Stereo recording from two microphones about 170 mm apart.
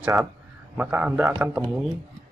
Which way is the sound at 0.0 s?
15° right (ahead or behind).